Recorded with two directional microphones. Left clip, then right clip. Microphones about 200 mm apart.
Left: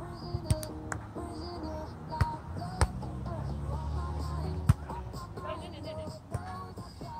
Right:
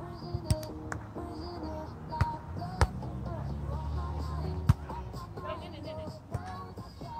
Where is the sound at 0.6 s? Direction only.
25° left (ahead or behind).